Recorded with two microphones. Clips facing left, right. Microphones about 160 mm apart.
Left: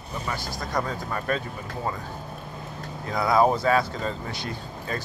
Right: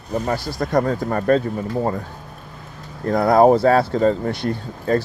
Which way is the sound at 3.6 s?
30° right (ahead or behind).